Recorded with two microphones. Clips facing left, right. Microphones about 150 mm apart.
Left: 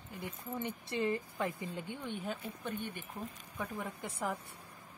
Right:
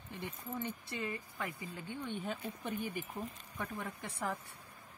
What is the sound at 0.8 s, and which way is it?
Speech, 25° left (ahead or behind).